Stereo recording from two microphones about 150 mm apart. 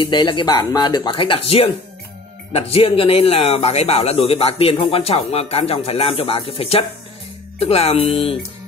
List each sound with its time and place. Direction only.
0.0 s speech: 30° left (ahead or behind)